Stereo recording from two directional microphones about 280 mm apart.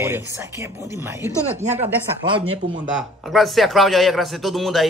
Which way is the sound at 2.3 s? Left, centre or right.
Centre.